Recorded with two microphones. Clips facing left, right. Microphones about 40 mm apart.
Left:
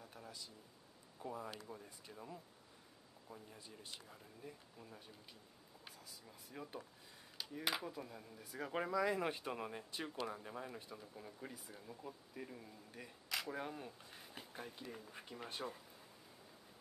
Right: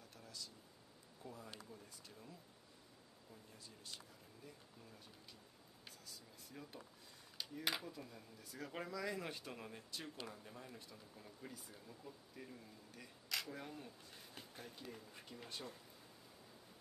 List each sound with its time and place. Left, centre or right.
0.0 s a sound: centre
1.2 s speech: left
1.7 s speech: left
2.0 s speech: left
3.5 s speech: left
7.4 s a sound: centre
7.8 s speech: centre
13.5 s speech: left